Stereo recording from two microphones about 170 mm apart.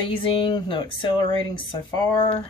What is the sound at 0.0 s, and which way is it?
Speech, 30° left (ahead or behind).